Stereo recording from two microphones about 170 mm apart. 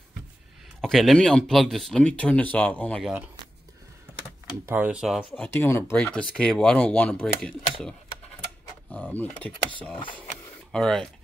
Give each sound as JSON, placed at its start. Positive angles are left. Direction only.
{"t": 0.7, "sound": "speech", "side_deg": 0}
{"t": 4.6, "sound": "speech", "side_deg": -10}
{"t": 5.3, "sound": "speech", "side_deg": 10}
{"t": 9.1, "sound": "speech", "side_deg": 10}
{"t": 10.7, "sound": "speech", "side_deg": 5}